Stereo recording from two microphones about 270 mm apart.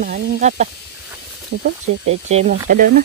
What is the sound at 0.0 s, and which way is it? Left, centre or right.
Speech, right.